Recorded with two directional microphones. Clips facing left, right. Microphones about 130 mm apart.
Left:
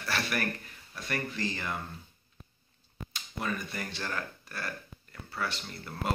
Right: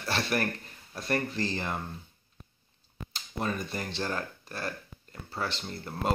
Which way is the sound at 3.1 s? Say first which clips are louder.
Right 2 dB; 30° right (ahead or behind).